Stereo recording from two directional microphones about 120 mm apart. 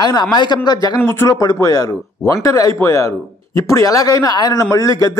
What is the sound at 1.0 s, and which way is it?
Speech, 20° left (ahead or behind).